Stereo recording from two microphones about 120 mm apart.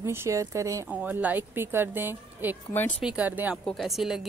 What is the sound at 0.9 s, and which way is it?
Speech, 15° right (ahead or behind).